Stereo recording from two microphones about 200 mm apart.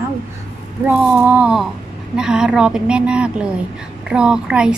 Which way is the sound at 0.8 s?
10° right (ahead or behind).